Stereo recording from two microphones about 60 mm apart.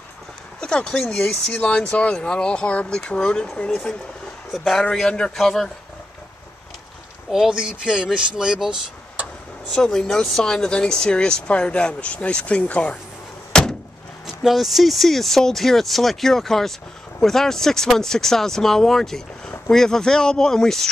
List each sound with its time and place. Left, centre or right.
0.6 s speech: centre
1.5 s speech: left
4.5 s speech: centre
4.9 s speech: centre
7.2 s speech: centre
9.7 s speech: centre
13.5 s door: centre
14.2 s speech: centre